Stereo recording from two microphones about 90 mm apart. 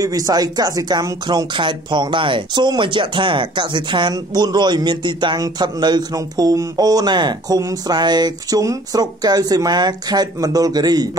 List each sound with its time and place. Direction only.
0.0 s speech: 40° right (ahead or behind); by 4.1 s 60° right (ahead or behind)
4.1 s speech: 45° right (ahead or behind)